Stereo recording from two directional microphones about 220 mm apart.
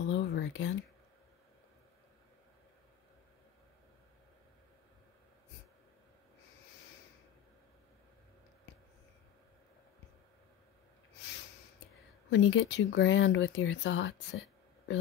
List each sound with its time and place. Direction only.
0.1 s whispering: 55° left (ahead or behind)
12.3 s speech: 60° left (ahead or behind)